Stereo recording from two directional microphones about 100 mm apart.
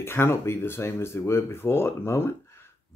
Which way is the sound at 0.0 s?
25° left (ahead or behind).